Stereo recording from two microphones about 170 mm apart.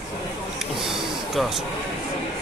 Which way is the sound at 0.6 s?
Centre (ahead or behind).